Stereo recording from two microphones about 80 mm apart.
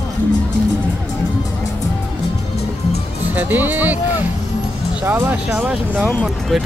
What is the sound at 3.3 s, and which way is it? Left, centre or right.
Music, right.